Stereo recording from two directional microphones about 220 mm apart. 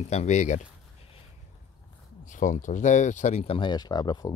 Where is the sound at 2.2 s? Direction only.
35° left (ahead or behind).